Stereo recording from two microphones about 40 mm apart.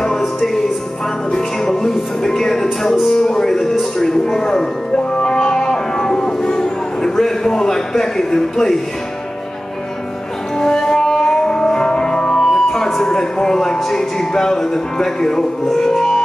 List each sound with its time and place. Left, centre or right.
0.0 s music: centre
4.0 s speech: centre
5.1 s music: left
10.6 s music: centre
12.4 s speech: centre